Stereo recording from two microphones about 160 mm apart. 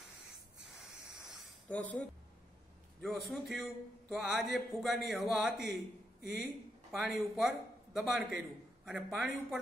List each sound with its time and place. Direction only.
0.7 s spray: centre (ahead or behind)
1.7 s a man's voice: 10° left (ahead or behind)
6.9 s a man's voice: centre (ahead or behind)